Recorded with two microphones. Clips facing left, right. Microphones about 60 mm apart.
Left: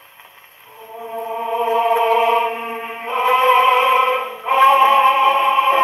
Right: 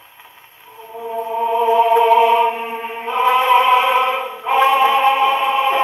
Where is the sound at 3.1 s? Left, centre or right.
Left.